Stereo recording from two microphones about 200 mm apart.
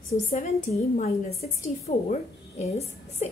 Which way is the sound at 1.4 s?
30° left (ahead or behind).